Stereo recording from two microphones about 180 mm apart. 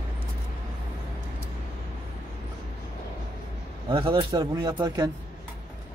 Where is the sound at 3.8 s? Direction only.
30° right (ahead or behind).